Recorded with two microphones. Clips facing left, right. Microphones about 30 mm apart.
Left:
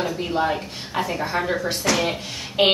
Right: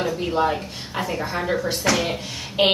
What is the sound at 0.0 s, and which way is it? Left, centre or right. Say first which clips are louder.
A woman's voice: right 1 dB; centre.